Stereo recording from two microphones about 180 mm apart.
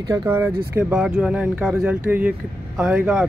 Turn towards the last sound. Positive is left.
turn(degrees=-5)  # may be behind; listen again after turning